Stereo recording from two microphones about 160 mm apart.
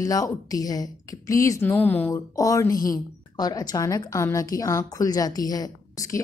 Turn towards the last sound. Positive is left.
turn(degrees=20)  # may be behind; listen again after turning